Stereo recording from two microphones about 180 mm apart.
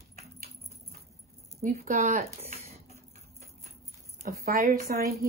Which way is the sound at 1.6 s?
45° right (ahead or behind).